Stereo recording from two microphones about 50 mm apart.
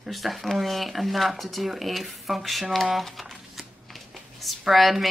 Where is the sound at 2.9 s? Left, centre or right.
Centre.